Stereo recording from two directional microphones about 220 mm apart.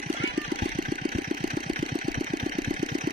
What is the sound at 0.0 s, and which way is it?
Jackhammer, 35° right (ahead or behind).